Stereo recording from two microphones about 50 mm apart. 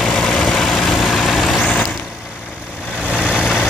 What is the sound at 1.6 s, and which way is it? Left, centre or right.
Vehicle, left.